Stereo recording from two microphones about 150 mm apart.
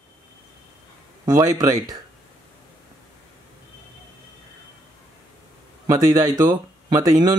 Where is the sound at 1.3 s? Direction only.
25° right (ahead or behind).